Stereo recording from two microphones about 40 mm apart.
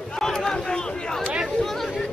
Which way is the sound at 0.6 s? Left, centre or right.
Left.